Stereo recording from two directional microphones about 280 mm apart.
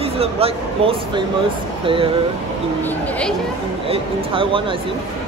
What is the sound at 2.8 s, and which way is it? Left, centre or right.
Speech, centre.